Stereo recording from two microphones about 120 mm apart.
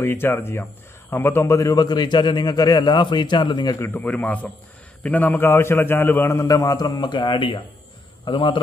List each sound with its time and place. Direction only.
0.0 s a man's voice: 20° left (ahead or behind); by 3.7 s 40° left (ahead or behind)
3.8 s a man's voice: 15° left (ahead or behind); by 8.5 s 45° left (ahead or behind)